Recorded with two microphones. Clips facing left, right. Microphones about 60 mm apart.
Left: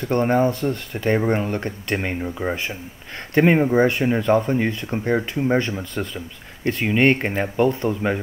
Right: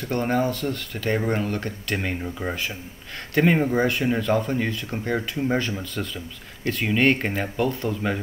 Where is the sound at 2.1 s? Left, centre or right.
Centre.